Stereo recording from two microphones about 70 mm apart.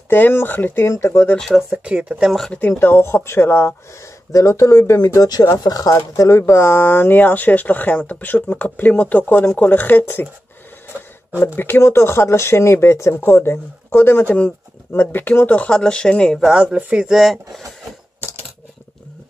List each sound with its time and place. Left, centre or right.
0.1 s speech: left
0.8 s speech: left
1.7 s speech: centre
2.2 s speech: centre
2.8 s speech: left
4.3 s speech: left
6.3 s speech: left
11.3 s speech: left
15.7 s speech: centre
16.3 s speech: centre